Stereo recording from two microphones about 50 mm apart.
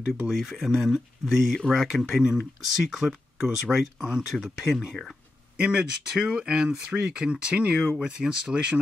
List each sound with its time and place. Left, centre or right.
0.0 s speech: centre
5.6 s speech: right